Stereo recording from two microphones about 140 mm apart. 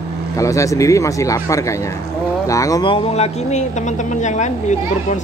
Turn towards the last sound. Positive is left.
turn(degrees=55)  # may be behind; listen again after turning